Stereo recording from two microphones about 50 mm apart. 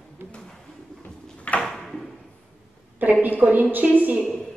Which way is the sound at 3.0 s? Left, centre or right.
Right.